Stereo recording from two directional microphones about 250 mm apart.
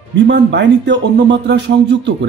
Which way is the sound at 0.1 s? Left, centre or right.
Right.